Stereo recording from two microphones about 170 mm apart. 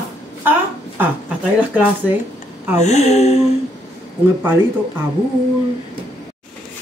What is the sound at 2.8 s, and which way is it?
Speech, 40° left (ahead or behind).